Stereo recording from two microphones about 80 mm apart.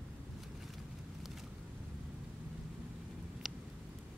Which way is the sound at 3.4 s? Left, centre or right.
Centre.